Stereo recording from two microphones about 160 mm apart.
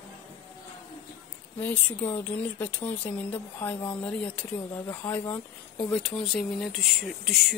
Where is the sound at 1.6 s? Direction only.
10° left (ahead or behind).